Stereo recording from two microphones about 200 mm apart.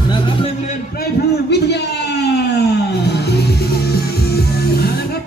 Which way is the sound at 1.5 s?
55° left (ahead or behind).